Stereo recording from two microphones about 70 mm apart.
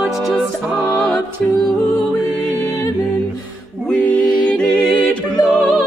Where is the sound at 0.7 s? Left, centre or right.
Centre.